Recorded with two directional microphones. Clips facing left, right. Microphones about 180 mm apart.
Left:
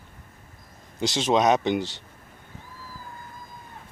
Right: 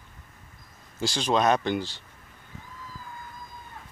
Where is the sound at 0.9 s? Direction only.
20° left (ahead or behind).